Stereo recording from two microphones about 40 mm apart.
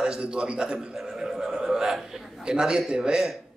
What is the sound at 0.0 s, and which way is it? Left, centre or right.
Speech, right.